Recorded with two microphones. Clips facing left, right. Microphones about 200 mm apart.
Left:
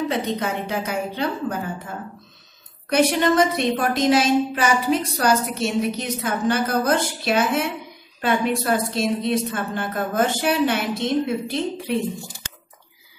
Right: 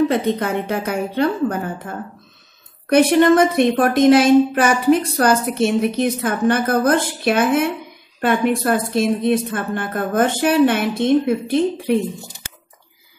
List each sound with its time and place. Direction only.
0.1 s speech: 55° right (ahead or behind)
2.9 s a woman's voice: 55° right (ahead or behind)